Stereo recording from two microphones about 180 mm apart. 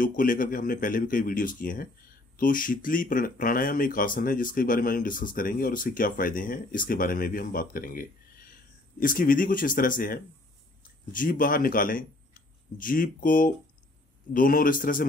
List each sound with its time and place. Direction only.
0.0 s speech: 50° left (ahead or behind)